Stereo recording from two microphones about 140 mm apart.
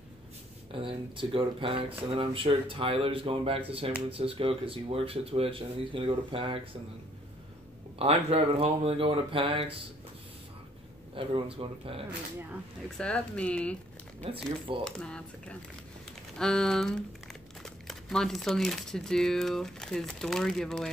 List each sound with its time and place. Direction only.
0.7 s speech: 40° right (ahead or behind)
8.0 s speech: 45° right (ahead or behind)
11.1 s speech: 40° right (ahead or behind)
12.9 s speech: 5° left (ahead or behind)
14.2 s speech: 40° right (ahead or behind)
14.9 s speech: 5° left (ahead or behind)